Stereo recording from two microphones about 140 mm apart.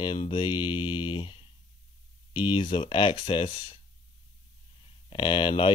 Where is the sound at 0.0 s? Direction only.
35° left (ahead or behind).